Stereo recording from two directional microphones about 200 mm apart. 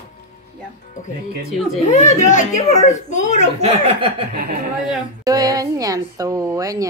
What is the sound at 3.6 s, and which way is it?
Chuckle, 30° right (ahead or behind).